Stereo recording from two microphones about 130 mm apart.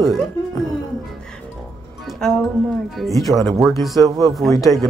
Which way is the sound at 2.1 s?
5° left (ahead or behind).